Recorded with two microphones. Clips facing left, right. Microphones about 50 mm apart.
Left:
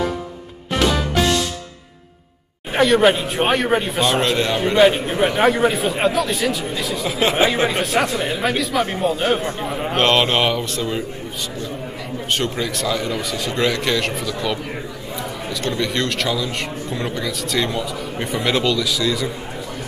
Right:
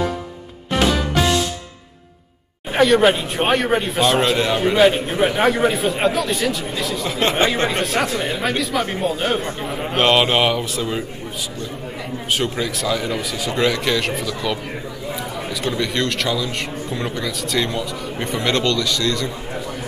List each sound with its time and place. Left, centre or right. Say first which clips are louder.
0.8 s music: left 1 dB; centre
2.7 s speech: even; centre
12.4 s speech: right 1 dB; centre
15.6 s speech: even; centre